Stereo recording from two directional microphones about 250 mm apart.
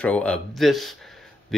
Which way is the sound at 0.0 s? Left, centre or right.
Centre.